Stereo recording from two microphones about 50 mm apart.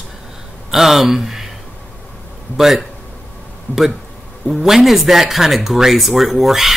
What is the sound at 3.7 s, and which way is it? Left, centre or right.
Speech, left.